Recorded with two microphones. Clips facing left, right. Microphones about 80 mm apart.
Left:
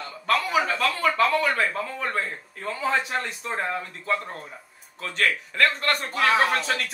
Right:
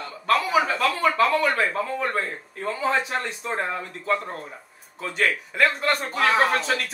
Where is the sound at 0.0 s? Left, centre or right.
Centre.